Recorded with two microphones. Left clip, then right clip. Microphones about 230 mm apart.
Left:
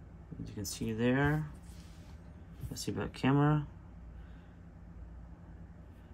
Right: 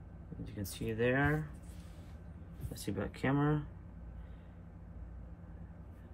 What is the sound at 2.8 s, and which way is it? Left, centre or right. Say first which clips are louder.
Speech: left 2 dB; centre.